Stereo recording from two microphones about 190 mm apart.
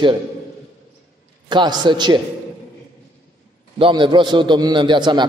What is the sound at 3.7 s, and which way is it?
A man's voice, 25° right (ahead or behind).